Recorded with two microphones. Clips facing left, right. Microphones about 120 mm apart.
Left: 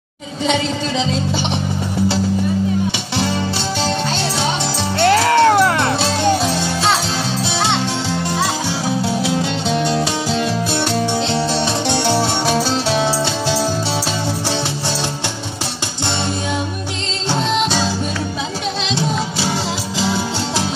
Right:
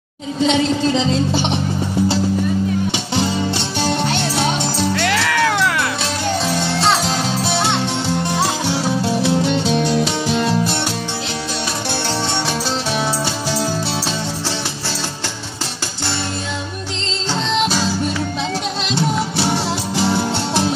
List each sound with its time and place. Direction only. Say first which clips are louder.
4.9 s music: left 10 dB; 35° left (ahead or behind)
11.9 s music: left 4 dB; 15° left (ahead or behind)